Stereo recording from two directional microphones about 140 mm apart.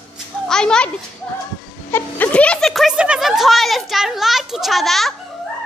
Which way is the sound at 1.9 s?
15° left (ahead or behind).